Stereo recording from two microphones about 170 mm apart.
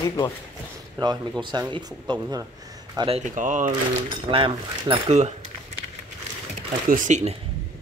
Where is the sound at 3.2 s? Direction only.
50° right (ahead or behind).